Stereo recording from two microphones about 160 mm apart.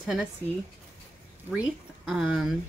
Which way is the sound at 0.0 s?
Centre (ahead or behind).